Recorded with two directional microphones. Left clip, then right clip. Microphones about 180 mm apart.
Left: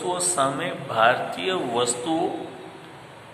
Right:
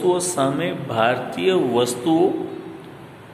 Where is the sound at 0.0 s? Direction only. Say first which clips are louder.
Right 4 dB; 30° right (ahead or behind).